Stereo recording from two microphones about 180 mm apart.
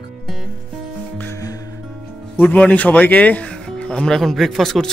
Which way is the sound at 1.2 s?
15° left (ahead or behind).